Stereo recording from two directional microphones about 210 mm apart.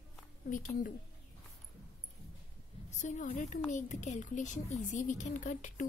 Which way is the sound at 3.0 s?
35° left (ahead or behind).